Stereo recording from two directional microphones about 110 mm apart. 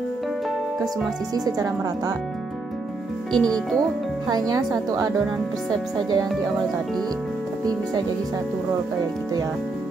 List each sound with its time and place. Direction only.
1.3 s speech: 35° right (ahead or behind)
3.3 s speech: 5° left (ahead or behind)
4.3 s speech: 35° right (ahead or behind)